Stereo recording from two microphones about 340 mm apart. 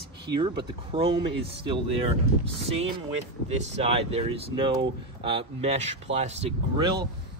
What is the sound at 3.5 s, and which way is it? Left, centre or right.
Speech, centre.